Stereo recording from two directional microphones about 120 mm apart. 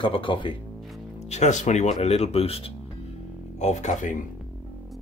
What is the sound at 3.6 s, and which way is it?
Speech, 75° left (ahead or behind).